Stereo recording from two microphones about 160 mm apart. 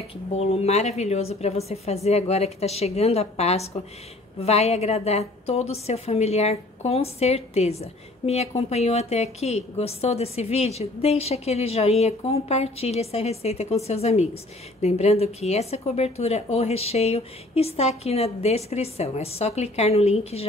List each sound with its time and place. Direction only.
0.4 s a woman's voice: 40° left (ahead or behind)